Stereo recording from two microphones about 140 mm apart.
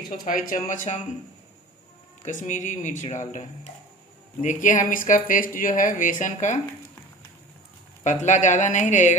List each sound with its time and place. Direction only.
0.2 s speech: 75° left (ahead or behind)
2.2 s speech: 65° left (ahead or behind)
8.0 s speech: 60° left (ahead or behind)